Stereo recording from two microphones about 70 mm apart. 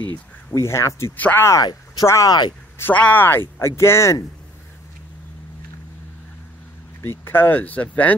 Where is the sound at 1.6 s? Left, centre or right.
Left.